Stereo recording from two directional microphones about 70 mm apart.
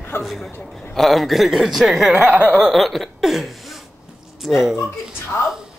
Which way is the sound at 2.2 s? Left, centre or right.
Right.